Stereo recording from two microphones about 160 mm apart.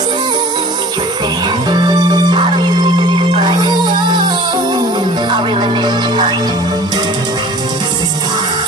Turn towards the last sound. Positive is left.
turn(degrees=-25)  # may be behind; listen again after turning